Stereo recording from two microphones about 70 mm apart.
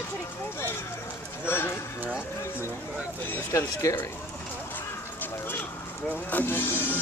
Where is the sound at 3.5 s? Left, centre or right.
Left.